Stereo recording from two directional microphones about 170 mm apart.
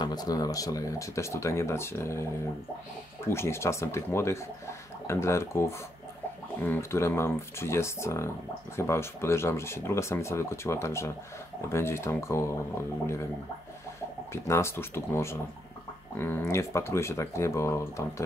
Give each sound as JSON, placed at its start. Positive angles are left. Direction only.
{"t": 0.0, "sound": "speech", "side_deg": 25}
{"t": 3.3, "sound": "speech", "side_deg": 15}
{"t": 14.3, "sound": "speech", "side_deg": 15}